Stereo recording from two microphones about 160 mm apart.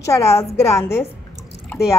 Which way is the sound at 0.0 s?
20° left (ahead or behind).